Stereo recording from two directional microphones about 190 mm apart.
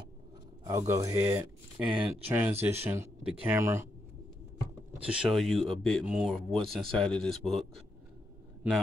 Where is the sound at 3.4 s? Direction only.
10° right (ahead or behind).